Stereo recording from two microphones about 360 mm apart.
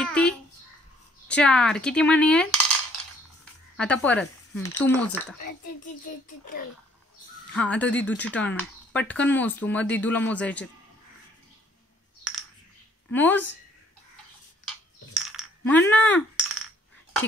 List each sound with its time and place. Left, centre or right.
0.0 s a sound: centre
1.2 s speech: centre
3.7 s speech: centre
6.2 s a child's voice: left
7.5 s speech: centre
13.1 s speech: centre
15.1 s coin: centre
15.9 s speech: centre